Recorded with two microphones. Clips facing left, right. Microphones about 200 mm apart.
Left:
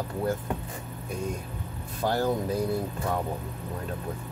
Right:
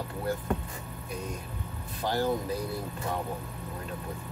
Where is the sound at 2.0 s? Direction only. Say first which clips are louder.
Left 4 dB; 50° left (ahead or behind).